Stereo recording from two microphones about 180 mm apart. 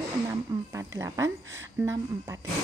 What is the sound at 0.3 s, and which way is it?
Music, 15° right (ahead or behind).